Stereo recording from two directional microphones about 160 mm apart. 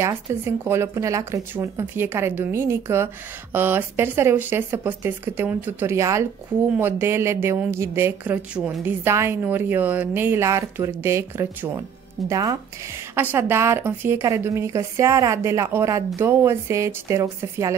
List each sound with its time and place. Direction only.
0.0 s a woman's voice: 15° right (ahead or behind)